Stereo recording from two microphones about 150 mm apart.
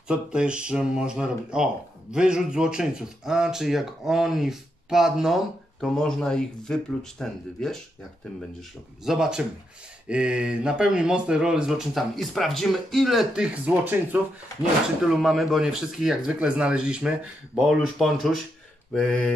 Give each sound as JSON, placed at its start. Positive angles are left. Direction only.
{"t": 0.1, "sound": "speech", "side_deg": -5}
{"t": 9.0, "sound": "speech", "side_deg": -5}